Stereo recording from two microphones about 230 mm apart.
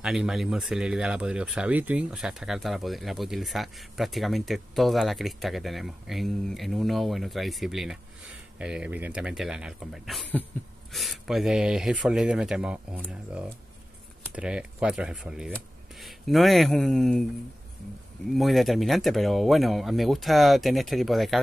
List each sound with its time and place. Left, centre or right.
0.0 s speech: centre
18.3 s speech: centre